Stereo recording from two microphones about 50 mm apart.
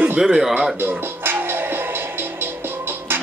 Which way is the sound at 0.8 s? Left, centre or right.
Right.